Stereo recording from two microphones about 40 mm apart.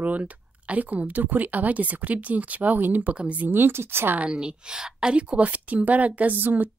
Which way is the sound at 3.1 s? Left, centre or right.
Right.